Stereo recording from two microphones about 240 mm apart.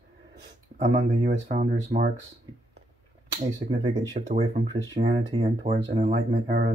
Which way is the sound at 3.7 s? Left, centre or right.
Right.